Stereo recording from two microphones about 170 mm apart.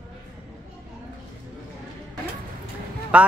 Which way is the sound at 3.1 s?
10° right (ahead or behind).